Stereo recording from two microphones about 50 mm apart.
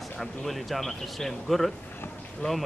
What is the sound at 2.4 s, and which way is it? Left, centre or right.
Speech, left.